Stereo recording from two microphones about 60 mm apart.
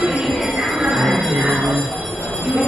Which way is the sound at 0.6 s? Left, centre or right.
Centre.